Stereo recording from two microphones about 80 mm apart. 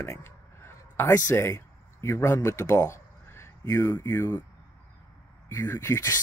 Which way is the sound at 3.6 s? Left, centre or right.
Left.